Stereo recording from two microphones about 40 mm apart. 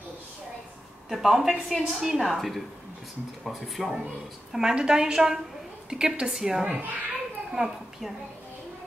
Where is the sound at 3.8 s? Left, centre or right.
Right.